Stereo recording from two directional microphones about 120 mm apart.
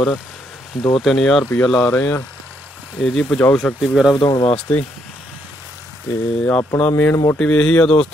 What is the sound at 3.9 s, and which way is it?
Speech, centre (ahead or behind).